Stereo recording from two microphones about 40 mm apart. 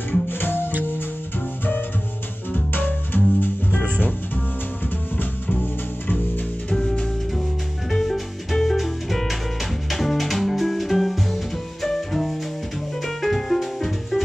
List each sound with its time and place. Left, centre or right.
0.3 s music: left
3.1 s music: left
6.0 s music: left
6.7 s music: centre